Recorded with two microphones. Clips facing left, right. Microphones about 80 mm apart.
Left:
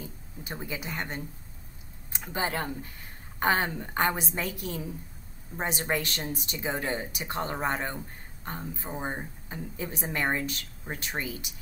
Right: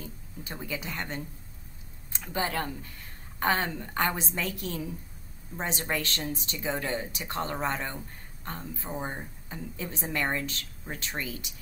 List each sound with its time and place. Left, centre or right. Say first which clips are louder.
0.0 s a sound: even; centre
0.7 s a woman's voice: right 1 dB; centre
5.6 s a woman's voice: left 2 dB; centre